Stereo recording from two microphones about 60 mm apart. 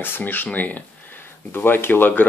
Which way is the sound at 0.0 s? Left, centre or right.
Left.